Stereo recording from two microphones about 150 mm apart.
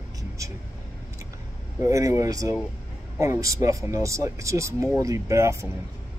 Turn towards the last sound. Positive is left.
turn(degrees=-20)  # may be behind; listen again after turning